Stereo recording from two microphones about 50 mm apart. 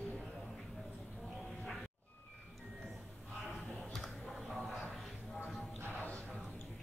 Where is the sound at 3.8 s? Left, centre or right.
Centre.